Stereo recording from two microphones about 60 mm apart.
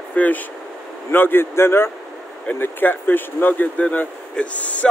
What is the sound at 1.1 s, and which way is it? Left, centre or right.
Speech, left.